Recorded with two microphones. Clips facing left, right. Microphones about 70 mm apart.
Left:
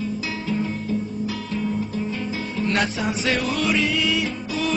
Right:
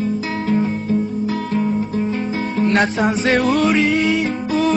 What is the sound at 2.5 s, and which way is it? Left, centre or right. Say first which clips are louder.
Music: right 7 dB; right.